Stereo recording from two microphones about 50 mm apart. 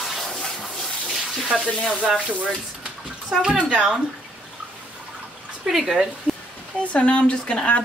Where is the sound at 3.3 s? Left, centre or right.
Centre.